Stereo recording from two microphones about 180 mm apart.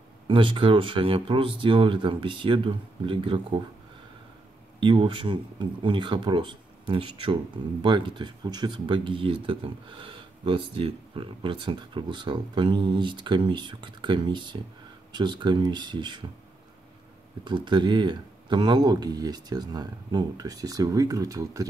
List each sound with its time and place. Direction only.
0.3 s speech: 30° right (ahead or behind)
4.7 s speech: 25° right (ahead or behind)
17.5 s speech: 25° right (ahead or behind)